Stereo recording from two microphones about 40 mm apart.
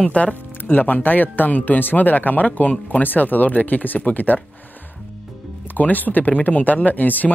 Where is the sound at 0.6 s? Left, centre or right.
Left.